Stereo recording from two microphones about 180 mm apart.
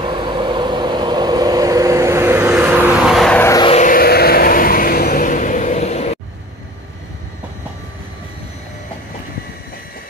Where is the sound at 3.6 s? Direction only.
45° left (ahead or behind).